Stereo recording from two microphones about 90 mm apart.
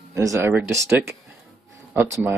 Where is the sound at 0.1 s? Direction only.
40° right (ahead or behind).